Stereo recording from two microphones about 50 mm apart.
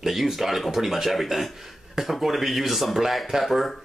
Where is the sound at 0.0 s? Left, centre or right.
Centre.